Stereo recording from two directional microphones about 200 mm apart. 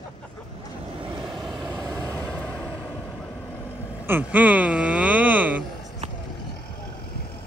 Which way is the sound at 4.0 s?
10° right (ahead or behind).